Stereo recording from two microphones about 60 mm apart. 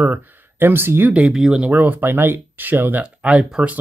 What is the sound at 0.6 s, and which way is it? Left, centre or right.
Speech, right.